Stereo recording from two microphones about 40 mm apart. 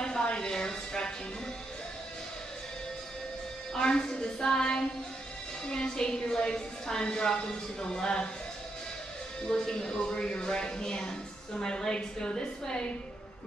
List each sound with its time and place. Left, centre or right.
0.0 s a sound: left
3.7 s a woman's voice: centre
9.7 s a woman's voice: centre